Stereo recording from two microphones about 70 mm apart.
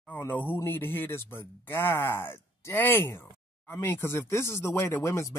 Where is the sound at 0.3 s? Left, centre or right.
Left.